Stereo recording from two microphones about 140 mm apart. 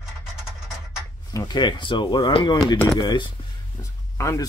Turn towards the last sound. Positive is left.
turn(degrees=20)  # may be behind; listen again after turning